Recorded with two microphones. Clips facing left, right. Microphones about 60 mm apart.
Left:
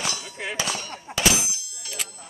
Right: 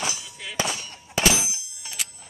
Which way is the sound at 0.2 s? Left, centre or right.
Left.